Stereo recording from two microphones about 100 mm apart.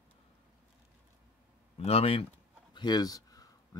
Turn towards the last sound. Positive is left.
turn(degrees=35)  # may be behind; listen again after turning